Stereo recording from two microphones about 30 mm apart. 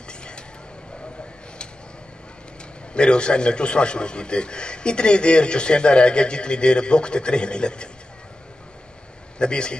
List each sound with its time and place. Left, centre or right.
2.9 s a man's voice: left
9.4 s a man's voice: left